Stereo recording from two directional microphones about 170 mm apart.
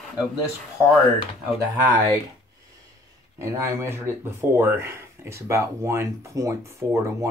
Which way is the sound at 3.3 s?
15° right (ahead or behind).